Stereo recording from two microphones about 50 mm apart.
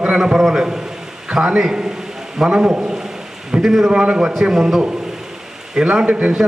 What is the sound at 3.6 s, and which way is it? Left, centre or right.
A man's voice, centre.